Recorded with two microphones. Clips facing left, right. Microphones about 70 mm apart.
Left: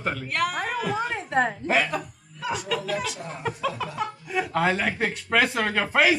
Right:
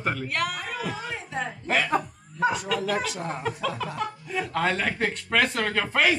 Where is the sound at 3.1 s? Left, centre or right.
Right.